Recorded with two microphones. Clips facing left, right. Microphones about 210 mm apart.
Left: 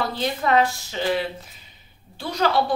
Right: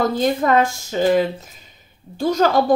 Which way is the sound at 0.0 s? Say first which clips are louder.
Right 7 dB; 45° right (ahead or behind).